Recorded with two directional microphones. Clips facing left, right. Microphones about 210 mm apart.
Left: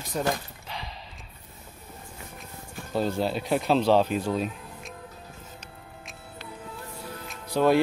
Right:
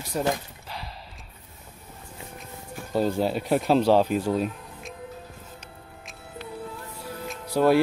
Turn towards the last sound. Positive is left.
turn(degrees=-5)  # may be behind; listen again after turning